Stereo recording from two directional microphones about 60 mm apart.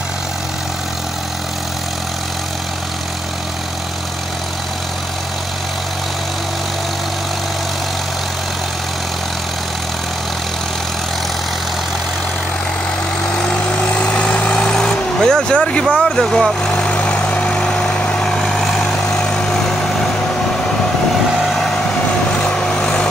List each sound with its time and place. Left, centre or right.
13.5 s vehicle: centre
15.9 s speech: centre
16.6 s vehicle: centre
18.3 s vehicle: centre
21.4 s vehicle: centre
22.3 s vehicle: centre